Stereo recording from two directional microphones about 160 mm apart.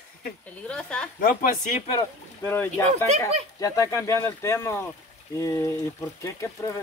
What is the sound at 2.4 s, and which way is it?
Speech, 15° left (ahead or behind).